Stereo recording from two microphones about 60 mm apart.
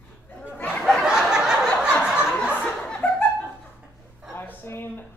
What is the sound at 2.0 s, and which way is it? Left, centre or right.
Chuckle, centre.